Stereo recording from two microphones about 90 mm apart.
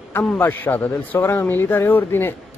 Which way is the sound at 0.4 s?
20° left (ahead or behind).